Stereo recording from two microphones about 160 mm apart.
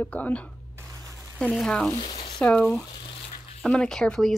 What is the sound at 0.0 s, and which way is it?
Speech, 10° left (ahead or behind).